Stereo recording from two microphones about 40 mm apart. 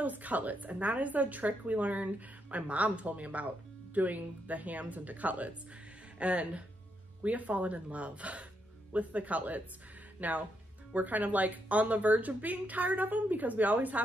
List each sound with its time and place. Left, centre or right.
0.0 s a woman's voice: right